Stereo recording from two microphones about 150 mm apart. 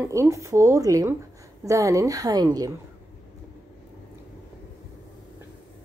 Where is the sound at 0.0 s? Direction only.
20° right (ahead or behind).